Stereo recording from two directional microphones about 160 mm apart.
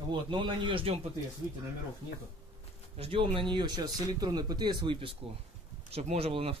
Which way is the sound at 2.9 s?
35° right (ahead or behind).